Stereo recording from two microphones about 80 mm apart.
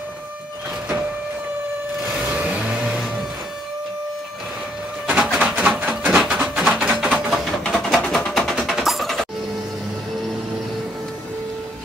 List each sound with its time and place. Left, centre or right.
2.0 s vehicle: centre
5.0 s bird: centre
5.8 s a sound: right; by 7.5 s centre
7.7 s music: centre
8.5 s music: centre